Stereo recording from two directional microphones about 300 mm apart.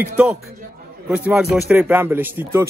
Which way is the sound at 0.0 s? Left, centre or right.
Centre.